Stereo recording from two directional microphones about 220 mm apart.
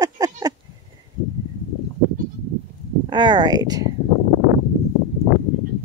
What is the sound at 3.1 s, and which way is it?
Speech, 20° right (ahead or behind).